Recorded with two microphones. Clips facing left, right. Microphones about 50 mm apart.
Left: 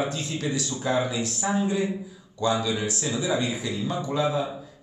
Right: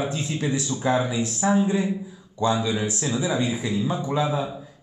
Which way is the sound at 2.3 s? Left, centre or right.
Right.